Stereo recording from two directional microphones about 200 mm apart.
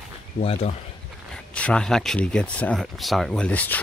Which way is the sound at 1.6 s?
5° left (ahead or behind).